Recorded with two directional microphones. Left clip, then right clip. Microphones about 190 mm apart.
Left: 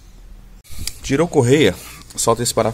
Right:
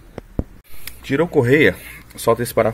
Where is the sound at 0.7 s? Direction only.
25° left (ahead or behind).